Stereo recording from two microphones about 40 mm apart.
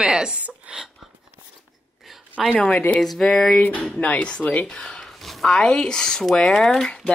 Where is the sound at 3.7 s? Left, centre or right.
Left; by 5.1 s centre.